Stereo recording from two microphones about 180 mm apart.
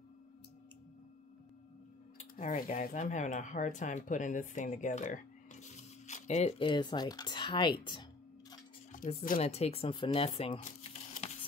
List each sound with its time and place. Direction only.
2.3 s speech: 50° left (ahead or behind); by 8.5 s 25° left (ahead or behind)
8.9 s speech: 50° left (ahead or behind)
9.4 s speech: 35° left (ahead or behind)